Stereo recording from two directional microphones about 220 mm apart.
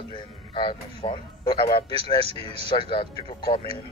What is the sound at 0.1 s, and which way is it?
Speech, 20° left (ahead or behind).